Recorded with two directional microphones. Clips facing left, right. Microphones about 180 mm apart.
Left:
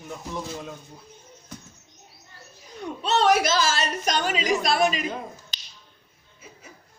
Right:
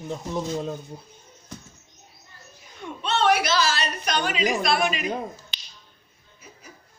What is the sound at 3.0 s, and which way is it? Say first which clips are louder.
A woman's voice: left 1 dB; 40° left (ahead or behind).